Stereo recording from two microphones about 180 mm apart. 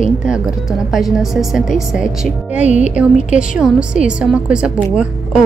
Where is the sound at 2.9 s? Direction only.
5° right (ahead or behind).